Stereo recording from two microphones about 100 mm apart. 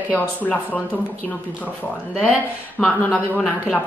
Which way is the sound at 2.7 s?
15° left (ahead or behind).